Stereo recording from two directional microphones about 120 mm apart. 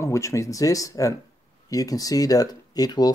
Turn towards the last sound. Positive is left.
turn(degrees=35)  # may be behind; listen again after turning